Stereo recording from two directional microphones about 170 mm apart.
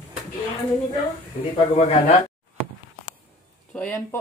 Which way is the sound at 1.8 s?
45° left (ahead or behind).